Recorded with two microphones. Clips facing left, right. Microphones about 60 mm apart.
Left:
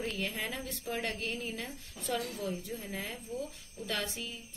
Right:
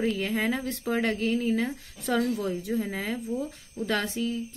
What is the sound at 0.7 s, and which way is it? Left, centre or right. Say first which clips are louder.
Speech: right 9 dB; right.